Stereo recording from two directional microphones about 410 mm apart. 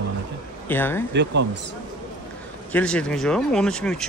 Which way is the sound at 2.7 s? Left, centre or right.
Centre.